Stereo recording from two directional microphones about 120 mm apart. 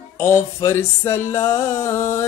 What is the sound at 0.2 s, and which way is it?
Music, 25° left (ahead or behind).